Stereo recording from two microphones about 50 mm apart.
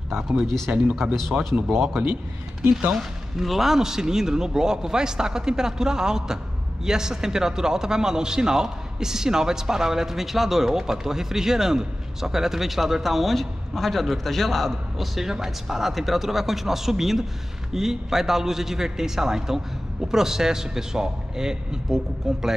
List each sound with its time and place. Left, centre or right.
0.7 s speech: right
1.4 s speech: centre